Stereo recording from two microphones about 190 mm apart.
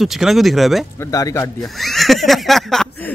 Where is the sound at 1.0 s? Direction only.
15° left (ahead or behind).